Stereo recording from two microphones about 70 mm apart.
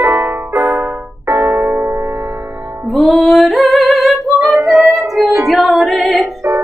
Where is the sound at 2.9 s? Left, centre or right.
Centre.